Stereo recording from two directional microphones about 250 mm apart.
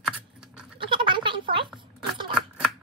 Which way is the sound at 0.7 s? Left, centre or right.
Centre.